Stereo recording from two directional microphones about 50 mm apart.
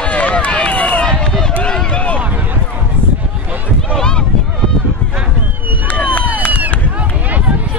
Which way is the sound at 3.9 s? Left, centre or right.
Centre.